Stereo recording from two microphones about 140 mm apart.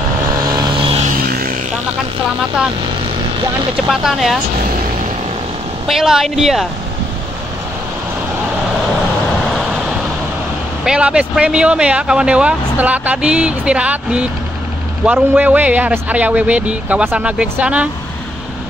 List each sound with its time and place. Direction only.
0.6 s vehicle: 40° right (ahead or behind)
3.9 s speech: centre (ahead or behind)
5.9 s speech: centre (ahead or behind)
9.5 s vehicle: 5° right (ahead or behind)
10.8 s speech: 5° right (ahead or behind)